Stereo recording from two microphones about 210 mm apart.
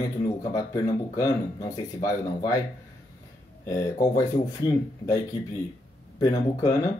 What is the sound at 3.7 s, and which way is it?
Speech, 15° left (ahead or behind).